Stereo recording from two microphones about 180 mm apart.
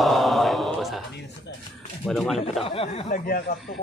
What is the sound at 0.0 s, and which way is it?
Mantra, centre (ahead or behind).